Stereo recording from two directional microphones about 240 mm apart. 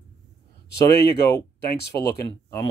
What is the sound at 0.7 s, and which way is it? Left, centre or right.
Speech, left.